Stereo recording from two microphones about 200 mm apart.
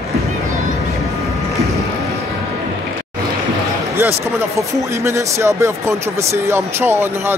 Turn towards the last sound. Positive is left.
turn(degrees=-10)  # may be behind; listen again after turning